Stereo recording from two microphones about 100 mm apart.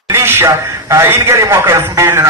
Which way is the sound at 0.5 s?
30° right (ahead or behind).